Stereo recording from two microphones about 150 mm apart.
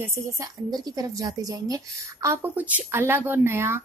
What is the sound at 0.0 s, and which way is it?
A woman's voice, 25° right (ahead or behind).